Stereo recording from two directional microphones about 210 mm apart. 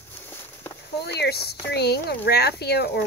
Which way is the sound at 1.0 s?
50° left (ahead or behind).